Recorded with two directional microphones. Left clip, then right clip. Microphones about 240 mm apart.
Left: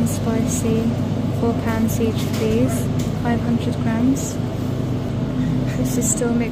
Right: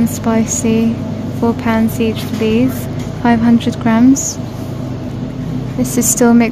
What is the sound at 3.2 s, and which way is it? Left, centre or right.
Speech, right.